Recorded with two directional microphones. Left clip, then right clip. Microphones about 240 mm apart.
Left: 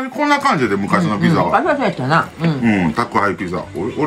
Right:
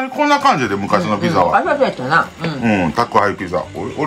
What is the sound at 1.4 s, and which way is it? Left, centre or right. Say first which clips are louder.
Speech: right 1 dB; left.